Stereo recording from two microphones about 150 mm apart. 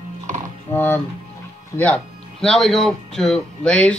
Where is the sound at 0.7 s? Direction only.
10° left (ahead or behind).